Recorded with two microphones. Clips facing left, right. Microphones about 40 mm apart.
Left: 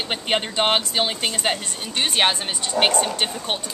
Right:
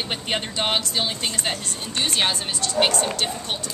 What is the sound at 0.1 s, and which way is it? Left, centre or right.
Speech, left.